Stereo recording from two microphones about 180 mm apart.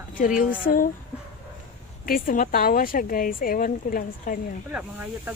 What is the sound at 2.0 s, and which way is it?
A woman's voice, 50° left (ahead or behind).